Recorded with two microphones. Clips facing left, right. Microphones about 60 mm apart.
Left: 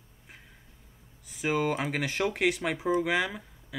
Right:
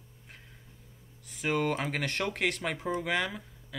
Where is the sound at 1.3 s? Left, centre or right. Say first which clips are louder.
Left 2 dB; centre.